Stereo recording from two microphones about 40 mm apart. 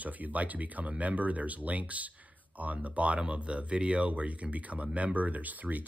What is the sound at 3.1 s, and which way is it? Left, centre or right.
Speech, right.